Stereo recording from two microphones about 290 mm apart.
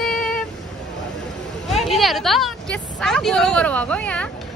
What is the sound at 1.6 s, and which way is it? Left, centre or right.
Speech, centre.